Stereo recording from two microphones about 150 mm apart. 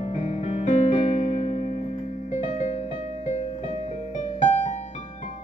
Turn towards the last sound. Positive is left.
turn(degrees=50)  # may be behind; listen again after turning